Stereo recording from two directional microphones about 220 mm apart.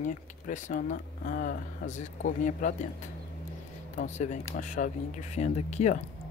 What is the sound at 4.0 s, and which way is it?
Speech, 35° left (ahead or behind).